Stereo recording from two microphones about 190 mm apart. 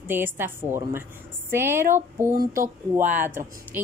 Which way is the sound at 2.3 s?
45° right (ahead or behind).